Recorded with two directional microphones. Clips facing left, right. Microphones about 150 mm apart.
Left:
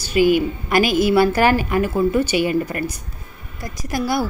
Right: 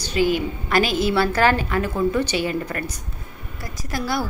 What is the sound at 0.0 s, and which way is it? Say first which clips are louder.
A woman's voice: left 5 dB; 10° left (ahead or behind).